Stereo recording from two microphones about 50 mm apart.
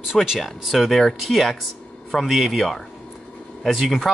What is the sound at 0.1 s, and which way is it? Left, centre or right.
Speech, centre.